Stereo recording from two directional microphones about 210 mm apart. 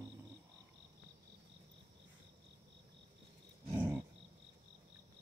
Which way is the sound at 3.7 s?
10° right (ahead or behind).